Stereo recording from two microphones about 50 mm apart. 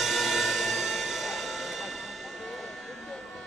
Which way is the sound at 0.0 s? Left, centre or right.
Centre.